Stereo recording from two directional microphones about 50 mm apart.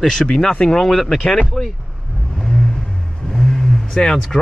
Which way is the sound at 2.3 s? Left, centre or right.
Centre.